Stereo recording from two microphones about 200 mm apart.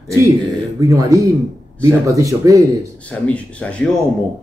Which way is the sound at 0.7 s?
15° right (ahead or behind).